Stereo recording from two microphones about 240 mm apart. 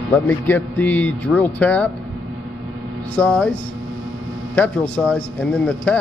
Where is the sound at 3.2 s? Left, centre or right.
Centre.